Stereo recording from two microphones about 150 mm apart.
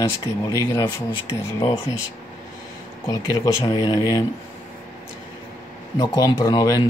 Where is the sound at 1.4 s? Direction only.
20° left (ahead or behind).